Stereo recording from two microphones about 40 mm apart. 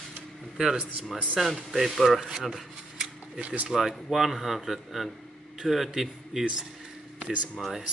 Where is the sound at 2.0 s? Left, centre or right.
Centre.